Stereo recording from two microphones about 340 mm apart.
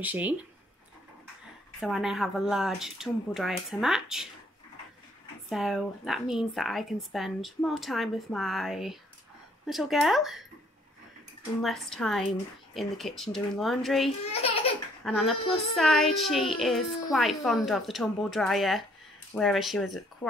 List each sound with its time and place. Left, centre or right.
0.0 s a child's voice: centre
1.8 s a child's voice: centre
5.5 s a child's voice: centre
11.6 s a child's voice: centre
14.2 s a sound: centre
15.0 s a child's voice: centre